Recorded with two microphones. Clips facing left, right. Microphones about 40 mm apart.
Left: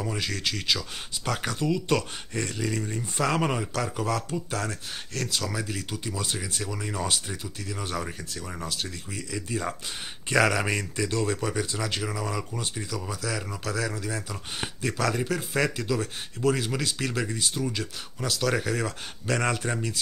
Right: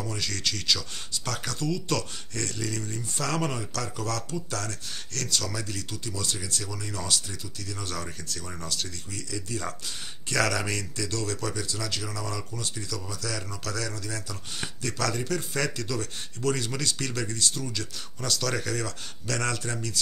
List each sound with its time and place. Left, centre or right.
0.0 s speech: centre